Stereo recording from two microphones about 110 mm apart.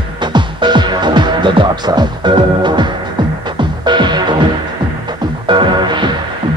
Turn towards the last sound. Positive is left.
turn(degrees=-45)  # may be behind; listen again after turning